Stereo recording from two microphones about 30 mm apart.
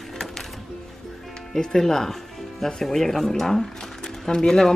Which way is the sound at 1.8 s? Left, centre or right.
Centre.